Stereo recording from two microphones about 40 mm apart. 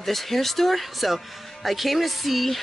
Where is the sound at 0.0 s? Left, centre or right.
Centre.